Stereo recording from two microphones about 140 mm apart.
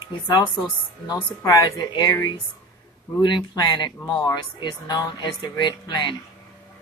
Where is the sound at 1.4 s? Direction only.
30° left (ahead or behind).